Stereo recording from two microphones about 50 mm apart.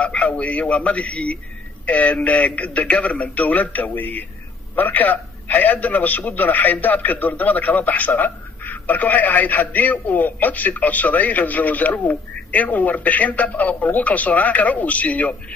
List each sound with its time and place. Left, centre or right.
0.0 s a man's voice: left